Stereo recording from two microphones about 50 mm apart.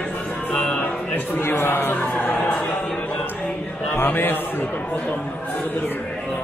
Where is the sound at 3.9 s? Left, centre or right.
Left.